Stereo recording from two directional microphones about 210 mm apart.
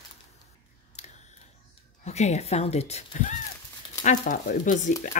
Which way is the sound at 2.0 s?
30° left (ahead or behind).